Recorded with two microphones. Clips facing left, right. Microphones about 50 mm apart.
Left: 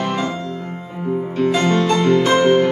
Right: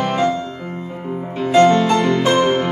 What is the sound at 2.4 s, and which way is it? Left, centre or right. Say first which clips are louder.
Music: left 3 dB; centre.